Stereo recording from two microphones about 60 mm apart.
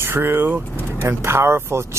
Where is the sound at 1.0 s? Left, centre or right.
Right.